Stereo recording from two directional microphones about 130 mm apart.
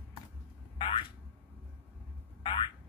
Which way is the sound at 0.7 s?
40° left (ahead or behind).